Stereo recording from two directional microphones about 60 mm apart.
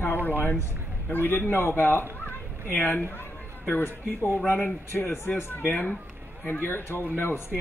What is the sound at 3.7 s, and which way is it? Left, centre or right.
A man's voice, left.